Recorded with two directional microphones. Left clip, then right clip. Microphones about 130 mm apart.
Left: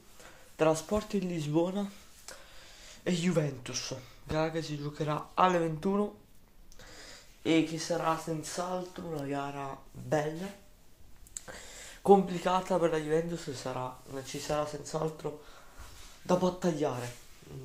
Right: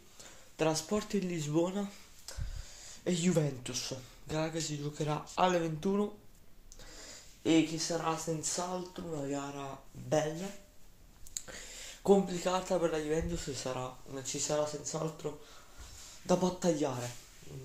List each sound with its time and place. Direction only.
0.6 s speech: 5° left (ahead or behind)
3.2 s speech: 10° right (ahead or behind)
4.7 s speech: 15° right (ahead or behind)
5.5 s speech: 10° left (ahead or behind)
11.3 s speech: 5° left (ahead or behind); by 13.2 s 30° left (ahead or behind)
13.3 s speech: centre (ahead or behind)
14.6 s speech: 20° left (ahead or behind)
17.5 s speech: 50° left (ahead or behind)